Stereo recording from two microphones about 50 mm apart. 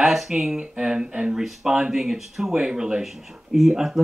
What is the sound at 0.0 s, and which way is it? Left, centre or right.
Speech, centre.